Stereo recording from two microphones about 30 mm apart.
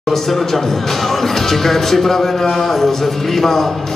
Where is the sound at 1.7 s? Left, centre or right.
Centre.